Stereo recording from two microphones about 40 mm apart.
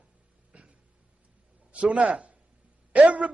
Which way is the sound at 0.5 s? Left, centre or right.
Right.